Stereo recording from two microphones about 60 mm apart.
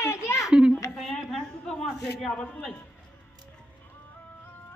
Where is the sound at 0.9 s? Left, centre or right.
Centre.